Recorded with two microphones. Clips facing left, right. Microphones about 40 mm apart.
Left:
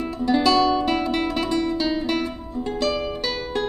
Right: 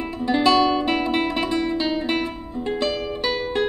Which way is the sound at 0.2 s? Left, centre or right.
Right.